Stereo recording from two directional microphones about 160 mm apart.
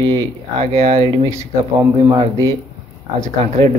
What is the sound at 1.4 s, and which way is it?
Speech, 20° right (ahead or behind).